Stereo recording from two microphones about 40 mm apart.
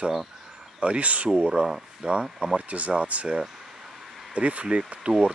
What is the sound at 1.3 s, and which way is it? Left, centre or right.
Speech, centre.